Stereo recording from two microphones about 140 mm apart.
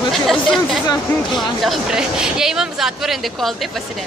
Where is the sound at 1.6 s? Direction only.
Centre (ahead or behind).